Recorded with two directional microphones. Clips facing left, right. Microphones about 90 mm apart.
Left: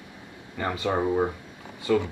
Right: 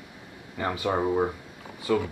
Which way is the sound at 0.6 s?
10° right (ahead or behind).